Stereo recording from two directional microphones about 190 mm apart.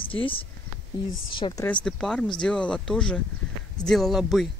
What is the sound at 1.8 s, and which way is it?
Speech, 5° left (ahead or behind).